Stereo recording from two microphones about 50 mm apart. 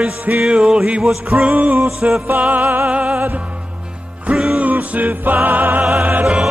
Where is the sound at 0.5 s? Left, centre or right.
Right.